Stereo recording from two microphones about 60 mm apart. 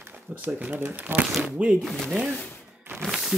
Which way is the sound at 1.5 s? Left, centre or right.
Centre.